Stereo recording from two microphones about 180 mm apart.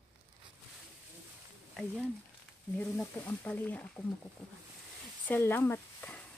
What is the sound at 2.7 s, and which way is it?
Speech, 10° left (ahead or behind).